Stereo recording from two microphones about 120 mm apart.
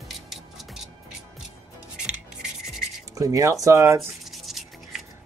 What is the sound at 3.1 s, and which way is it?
Speech, 25° right (ahead or behind).